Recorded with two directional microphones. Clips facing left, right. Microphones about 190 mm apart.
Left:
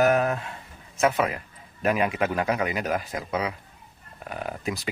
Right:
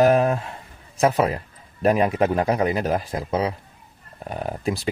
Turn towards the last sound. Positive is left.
turn(degrees=-35)  # may be behind; listen again after turning